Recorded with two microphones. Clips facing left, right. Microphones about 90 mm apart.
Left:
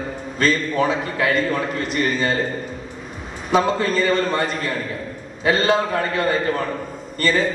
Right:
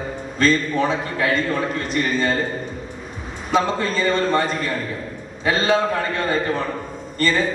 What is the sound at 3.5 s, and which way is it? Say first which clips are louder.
A man's voice: left 2 dB; 5° left (ahead or behind).